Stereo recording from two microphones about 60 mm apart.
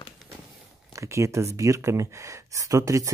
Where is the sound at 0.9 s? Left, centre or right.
Right.